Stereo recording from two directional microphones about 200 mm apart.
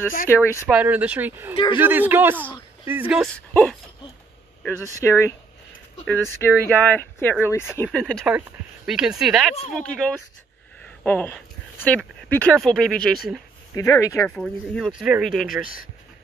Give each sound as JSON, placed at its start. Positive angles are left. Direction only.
{"t": 0.3, "sound": "speech", "side_deg": 10}
{"t": 0.7, "sound": "speech", "side_deg": -5}
{"t": 5.0, "sound": "speech", "side_deg": 10}
{"t": 13.7, "sound": "speech", "side_deg": 15}
{"t": 14.3, "sound": "speech", "side_deg": 5}
{"t": 15.6, "sound": "speech", "side_deg": 45}